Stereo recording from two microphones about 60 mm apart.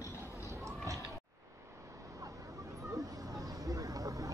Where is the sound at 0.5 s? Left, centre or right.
Right.